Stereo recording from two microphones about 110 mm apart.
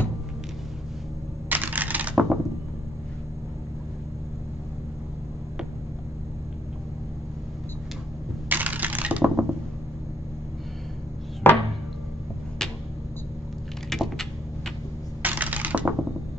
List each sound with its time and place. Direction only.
1.5 s coin: 15° right (ahead or behind)
8.5 s coin: 15° right (ahead or behind)
11.4 s chopping: 20° left (ahead or behind)
13.8 s typing: centre (ahead or behind)
15.2 s coin: 15° right (ahead or behind)